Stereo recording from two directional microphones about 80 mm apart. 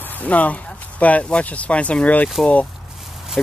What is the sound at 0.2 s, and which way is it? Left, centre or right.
Speech, centre.